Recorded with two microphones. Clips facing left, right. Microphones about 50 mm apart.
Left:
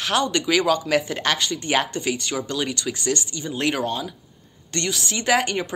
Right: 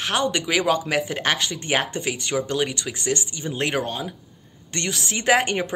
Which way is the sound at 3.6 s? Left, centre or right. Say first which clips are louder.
Left 1 dB; centre.